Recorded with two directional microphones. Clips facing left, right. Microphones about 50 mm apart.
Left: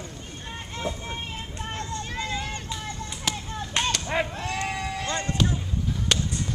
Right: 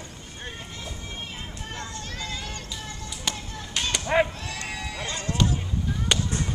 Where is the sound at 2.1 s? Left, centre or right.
Left.